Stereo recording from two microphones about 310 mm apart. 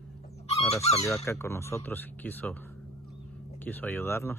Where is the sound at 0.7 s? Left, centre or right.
Centre.